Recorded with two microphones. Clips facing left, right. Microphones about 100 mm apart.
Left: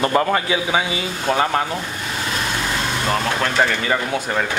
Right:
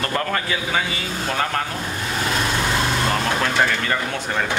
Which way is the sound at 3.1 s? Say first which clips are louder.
Left 1 dB; centre (ahead or behind).